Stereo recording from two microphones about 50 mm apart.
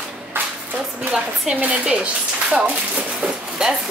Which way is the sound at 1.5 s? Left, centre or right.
Right.